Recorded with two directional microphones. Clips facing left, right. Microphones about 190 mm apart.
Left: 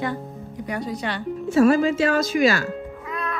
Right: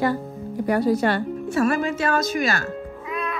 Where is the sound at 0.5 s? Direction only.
55° right (ahead or behind).